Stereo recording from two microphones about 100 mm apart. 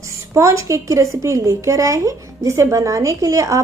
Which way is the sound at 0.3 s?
30° right (ahead or behind).